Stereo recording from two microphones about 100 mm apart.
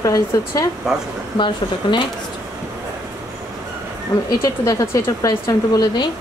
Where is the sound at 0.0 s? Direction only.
35° left (ahead or behind).